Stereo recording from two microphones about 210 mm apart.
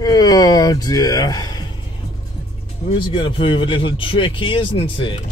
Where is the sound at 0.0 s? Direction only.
15° left (ahead or behind).